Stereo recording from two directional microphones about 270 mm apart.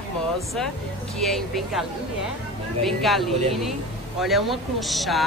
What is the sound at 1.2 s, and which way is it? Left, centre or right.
Speech, centre.